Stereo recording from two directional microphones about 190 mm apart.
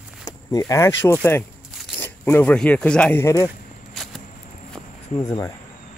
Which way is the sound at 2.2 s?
10° left (ahead or behind).